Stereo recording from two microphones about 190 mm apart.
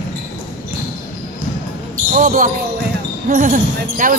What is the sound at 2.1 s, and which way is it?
Speech, 45° right (ahead or behind).